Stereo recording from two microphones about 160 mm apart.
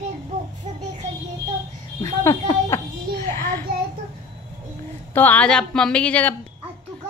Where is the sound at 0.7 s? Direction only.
45° right (ahead or behind).